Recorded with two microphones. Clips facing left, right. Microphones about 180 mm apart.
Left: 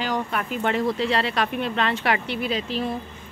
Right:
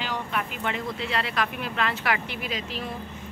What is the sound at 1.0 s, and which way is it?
Speech, 30° left (ahead or behind).